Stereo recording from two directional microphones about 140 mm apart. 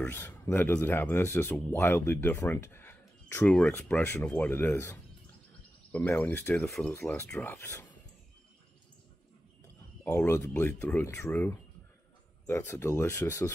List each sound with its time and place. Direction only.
0.0 s speech: 15° left (ahead or behind)
6.5 s speech: 5° left (ahead or behind)
10.0 s speech: 15° left (ahead or behind)